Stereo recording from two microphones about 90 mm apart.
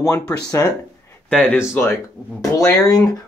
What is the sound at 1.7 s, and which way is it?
Speech, 30° left (ahead or behind).